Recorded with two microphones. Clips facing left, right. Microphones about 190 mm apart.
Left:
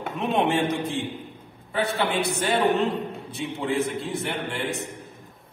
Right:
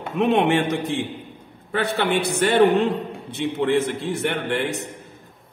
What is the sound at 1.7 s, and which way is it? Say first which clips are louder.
Speech: right 2 dB; 70° right (ahead or behind).